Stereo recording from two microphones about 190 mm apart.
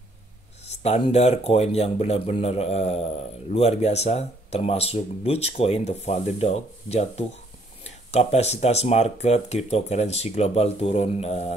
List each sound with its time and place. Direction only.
0.8 s speech: 35° left (ahead or behind)